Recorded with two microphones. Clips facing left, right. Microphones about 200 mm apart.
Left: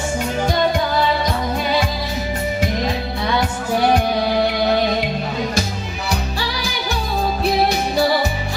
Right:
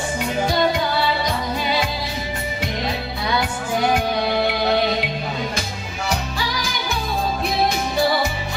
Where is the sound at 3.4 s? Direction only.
35° left (ahead or behind).